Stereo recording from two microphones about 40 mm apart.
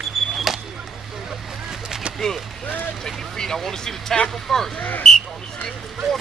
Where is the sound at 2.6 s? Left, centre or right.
Left.